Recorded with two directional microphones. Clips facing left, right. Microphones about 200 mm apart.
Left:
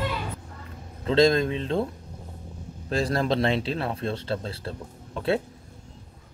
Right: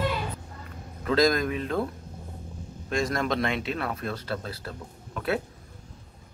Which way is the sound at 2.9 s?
30° left (ahead or behind).